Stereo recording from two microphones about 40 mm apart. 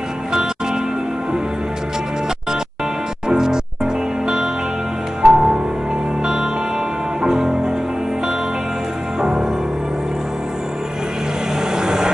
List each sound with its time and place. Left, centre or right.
3.3 s music: centre
9.2 s music: right
11.7 s vehicle: centre